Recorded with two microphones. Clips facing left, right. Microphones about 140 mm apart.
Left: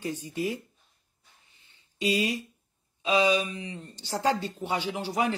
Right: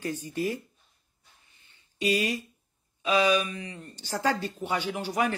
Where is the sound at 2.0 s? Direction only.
20° left (ahead or behind).